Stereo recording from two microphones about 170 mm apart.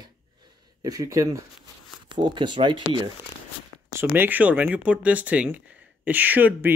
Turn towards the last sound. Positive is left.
turn(degrees=-10)  # may be behind; listen again after turning